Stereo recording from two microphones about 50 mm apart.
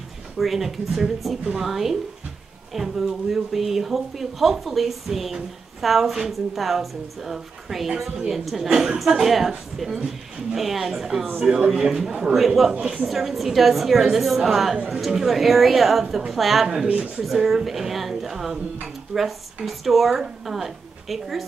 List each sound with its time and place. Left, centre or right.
0.4 s a woman's voice: centre
12.8 s a woman's voice: centre
13.1 s a woman's voice: centre
16.8 s speech: right
17.2 s a woman's voice: centre